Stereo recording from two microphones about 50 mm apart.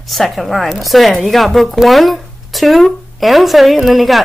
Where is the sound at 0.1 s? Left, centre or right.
Centre.